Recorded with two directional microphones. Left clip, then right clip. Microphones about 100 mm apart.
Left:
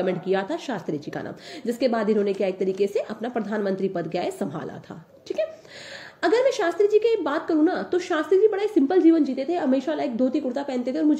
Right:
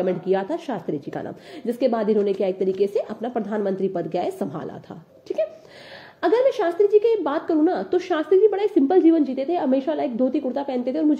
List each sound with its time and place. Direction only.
0.0 s a woman's voice: 30° right (ahead or behind)